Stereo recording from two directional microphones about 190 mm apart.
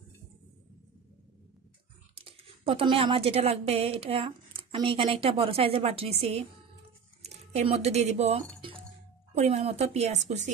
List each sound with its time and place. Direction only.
2.1 s a woman's voice: 30° right (ahead or behind)